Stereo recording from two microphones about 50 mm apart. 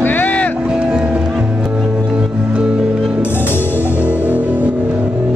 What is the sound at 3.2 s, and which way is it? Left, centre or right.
Music, left.